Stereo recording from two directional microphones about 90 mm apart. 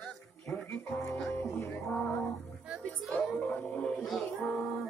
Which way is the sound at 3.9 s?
Centre (ahead or behind).